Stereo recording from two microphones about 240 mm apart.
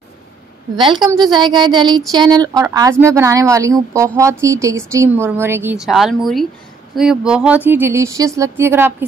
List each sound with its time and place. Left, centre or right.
0.7 s a woman's voice: centre